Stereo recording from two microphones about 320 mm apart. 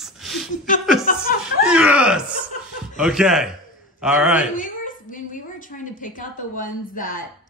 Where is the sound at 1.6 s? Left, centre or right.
Centre.